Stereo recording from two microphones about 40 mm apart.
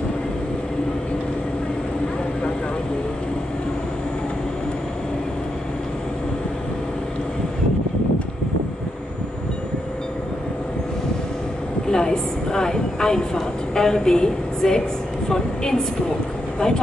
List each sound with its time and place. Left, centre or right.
11.9 s vehicle: centre
15.2 s a woman's voice: centre